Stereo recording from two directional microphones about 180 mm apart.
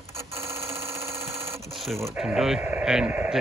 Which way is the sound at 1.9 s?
Centre (ahead or behind).